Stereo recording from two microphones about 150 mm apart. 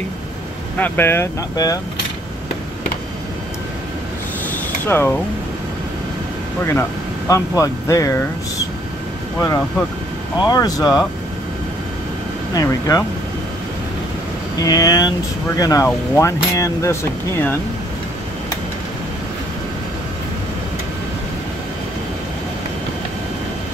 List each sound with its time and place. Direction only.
0.7 s speech: 15° left (ahead or behind)
4.8 s speech: 15° left (ahead or behind)
6.6 s speech: 15° left (ahead or behind)
10.5 s speech: 25° left (ahead or behind)
12.5 s speech: 25° left (ahead or behind)
14.6 s speech: 25° left (ahead or behind)